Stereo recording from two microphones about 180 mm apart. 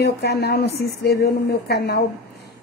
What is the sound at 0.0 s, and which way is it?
Speech, 60° left (ahead or behind).